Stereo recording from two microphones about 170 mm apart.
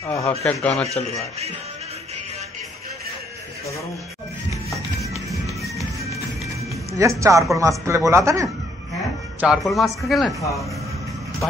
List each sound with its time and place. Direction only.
0.0 s speech: 20° left (ahead or behind)
0.4 s a man's voice: centre (ahead or behind)
7.0 s speech: 20° right (ahead or behind)
9.4 s a man's voice: centre (ahead or behind)